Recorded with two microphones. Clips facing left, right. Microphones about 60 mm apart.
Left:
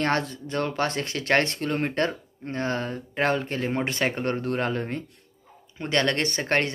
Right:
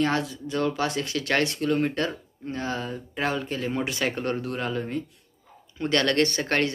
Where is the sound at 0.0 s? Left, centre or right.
Left.